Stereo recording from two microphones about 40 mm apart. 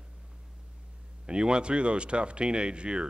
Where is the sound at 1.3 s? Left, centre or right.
Right.